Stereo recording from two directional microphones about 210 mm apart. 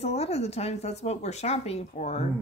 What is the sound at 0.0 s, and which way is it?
Speech, 30° left (ahead or behind).